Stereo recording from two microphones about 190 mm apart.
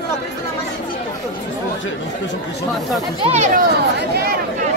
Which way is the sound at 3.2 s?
35° right (ahead or behind).